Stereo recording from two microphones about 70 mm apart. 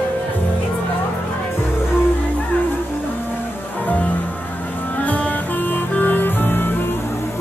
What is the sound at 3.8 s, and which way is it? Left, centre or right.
Music, left.